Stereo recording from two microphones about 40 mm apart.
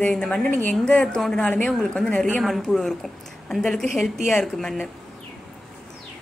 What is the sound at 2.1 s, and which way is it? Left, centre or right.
Speech, left.